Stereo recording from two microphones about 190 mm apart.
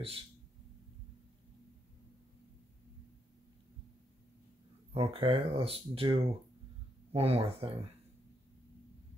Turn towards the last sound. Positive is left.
turn(degrees=-30)  # may be behind; listen again after turning